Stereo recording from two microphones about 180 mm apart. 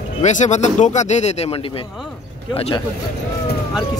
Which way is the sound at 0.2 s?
40° left (ahead or behind).